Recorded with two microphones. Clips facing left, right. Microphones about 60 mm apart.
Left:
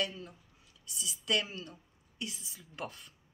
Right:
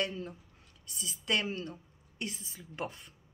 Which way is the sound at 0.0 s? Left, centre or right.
Right.